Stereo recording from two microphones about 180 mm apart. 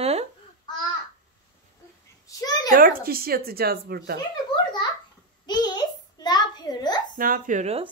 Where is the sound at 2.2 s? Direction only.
20° left (ahead or behind).